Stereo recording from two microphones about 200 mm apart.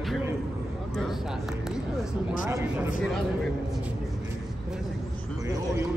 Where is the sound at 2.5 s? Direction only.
10° right (ahead or behind).